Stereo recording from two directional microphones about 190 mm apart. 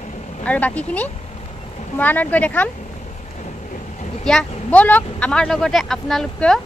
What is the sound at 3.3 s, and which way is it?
Vehicle, 40° left (ahead or behind).